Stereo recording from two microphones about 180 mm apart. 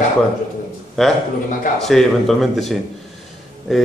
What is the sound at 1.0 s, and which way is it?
A man's voice, 5° left (ahead or behind).